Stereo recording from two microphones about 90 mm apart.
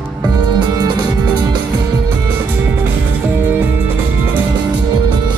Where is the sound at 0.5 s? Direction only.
50° right (ahead or behind).